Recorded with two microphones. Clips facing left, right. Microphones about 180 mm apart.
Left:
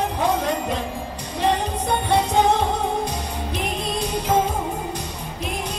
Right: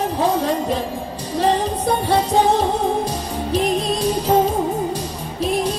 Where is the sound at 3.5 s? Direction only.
35° right (ahead or behind).